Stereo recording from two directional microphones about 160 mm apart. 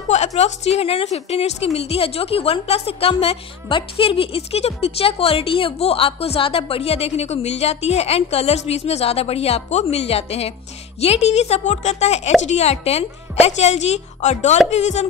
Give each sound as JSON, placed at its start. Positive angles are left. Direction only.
{"t": 0.1, "sound": "a woman's voice", "side_deg": 45}